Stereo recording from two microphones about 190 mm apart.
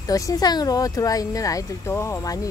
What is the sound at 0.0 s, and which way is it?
Speech, 20° left (ahead or behind).